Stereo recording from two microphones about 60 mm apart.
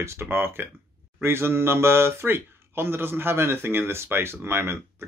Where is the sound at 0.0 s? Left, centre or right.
Right.